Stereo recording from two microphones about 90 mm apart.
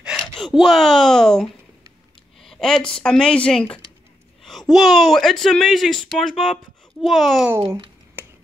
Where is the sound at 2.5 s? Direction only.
5° left (ahead or behind).